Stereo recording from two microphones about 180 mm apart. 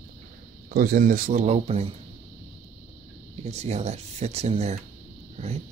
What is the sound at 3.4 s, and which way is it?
Speech, 40° right (ahead or behind).